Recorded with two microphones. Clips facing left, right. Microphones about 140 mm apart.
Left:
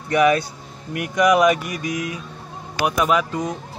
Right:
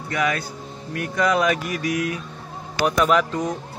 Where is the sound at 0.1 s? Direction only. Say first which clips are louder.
Left 7 dB; 20° left (ahead or behind).